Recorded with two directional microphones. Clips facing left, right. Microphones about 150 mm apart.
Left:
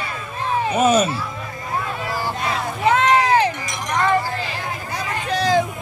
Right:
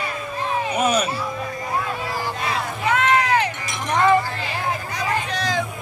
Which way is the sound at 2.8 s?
30° left (ahead or behind).